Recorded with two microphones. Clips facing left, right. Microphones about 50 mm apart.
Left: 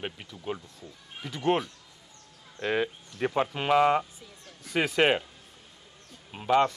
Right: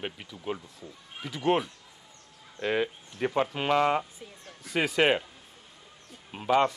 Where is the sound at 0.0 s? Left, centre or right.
Centre.